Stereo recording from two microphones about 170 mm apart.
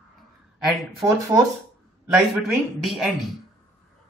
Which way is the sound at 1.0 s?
20° right (ahead or behind).